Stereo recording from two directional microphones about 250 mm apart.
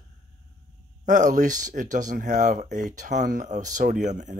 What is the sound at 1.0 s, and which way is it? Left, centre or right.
Speech, right.